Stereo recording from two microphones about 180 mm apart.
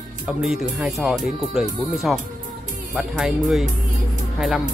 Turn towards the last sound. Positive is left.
turn(degrees=-5)  # may be behind; listen again after turning